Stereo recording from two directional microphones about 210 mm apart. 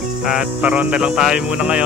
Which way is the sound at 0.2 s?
5° right (ahead or behind).